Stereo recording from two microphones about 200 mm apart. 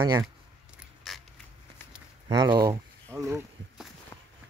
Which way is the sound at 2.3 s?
20° right (ahead or behind).